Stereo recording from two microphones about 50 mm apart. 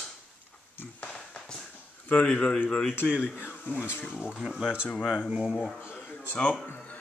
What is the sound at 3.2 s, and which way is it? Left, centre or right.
Speech, left.